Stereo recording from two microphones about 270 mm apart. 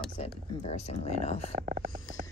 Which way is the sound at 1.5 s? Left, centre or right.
Right.